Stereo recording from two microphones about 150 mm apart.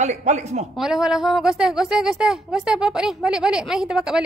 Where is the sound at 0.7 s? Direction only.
Centre (ahead or behind).